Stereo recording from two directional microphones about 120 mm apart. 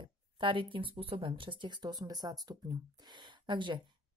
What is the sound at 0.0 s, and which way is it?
A woman's voice, 45° right (ahead or behind).